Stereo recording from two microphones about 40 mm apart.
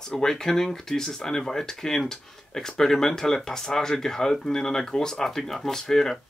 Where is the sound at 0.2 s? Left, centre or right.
Centre.